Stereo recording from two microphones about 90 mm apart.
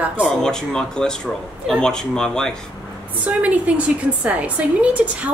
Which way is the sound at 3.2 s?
15° right (ahead or behind).